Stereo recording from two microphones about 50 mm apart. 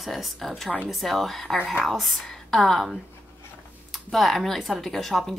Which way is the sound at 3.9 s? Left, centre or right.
Centre.